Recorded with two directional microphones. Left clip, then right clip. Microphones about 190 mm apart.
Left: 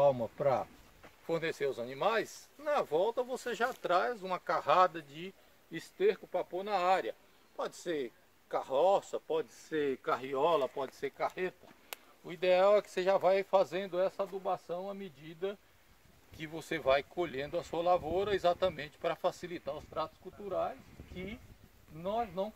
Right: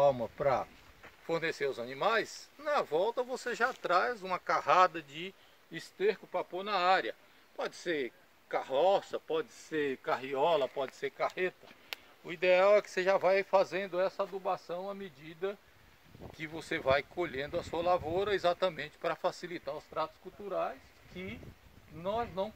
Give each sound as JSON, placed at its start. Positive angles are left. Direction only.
{"t": 0.0, "sound": "speech", "side_deg": 0}
{"t": 5.2, "sound": "speech", "side_deg": -55}
{"t": 11.9, "sound": "a sound", "side_deg": 0}
{"t": 12.3, "sound": "speech", "side_deg": -20}
{"t": 16.3, "sound": "speech", "side_deg": 5}